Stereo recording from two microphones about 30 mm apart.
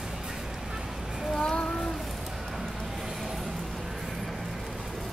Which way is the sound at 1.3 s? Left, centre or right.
Left.